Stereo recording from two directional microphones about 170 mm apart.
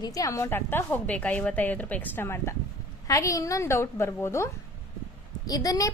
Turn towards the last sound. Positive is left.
turn(degrees=20)  # may be behind; listen again after turning